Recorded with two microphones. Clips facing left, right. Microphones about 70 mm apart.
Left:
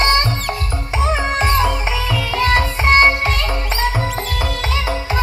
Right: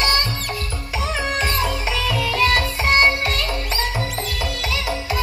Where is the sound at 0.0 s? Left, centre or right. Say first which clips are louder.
Left 5 dB; left.